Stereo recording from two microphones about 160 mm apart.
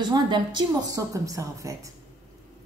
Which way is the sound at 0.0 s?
30° right (ahead or behind).